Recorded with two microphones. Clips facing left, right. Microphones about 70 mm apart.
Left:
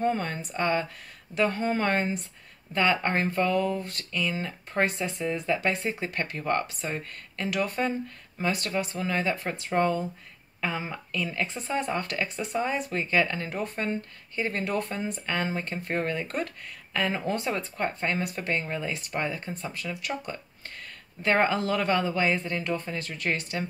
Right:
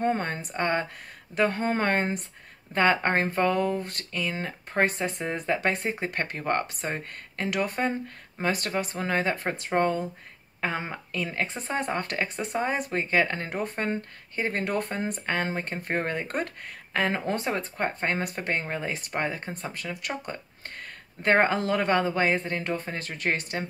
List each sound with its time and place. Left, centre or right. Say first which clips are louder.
0.0 s speech: right 1 dB; right
21.2 s speech: right 2 dB; right